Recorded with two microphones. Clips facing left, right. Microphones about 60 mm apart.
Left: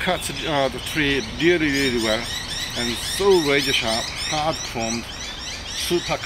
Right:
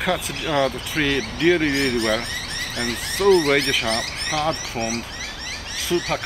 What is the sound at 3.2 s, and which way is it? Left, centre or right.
Speech, right.